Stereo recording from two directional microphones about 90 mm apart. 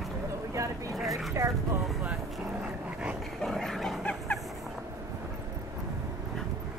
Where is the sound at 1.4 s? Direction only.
35° right (ahead or behind).